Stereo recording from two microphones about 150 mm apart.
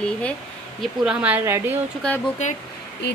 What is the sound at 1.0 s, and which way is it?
Speech, 5° right (ahead or behind).